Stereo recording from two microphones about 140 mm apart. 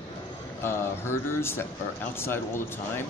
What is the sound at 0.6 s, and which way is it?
Speech, 15° left (ahead or behind).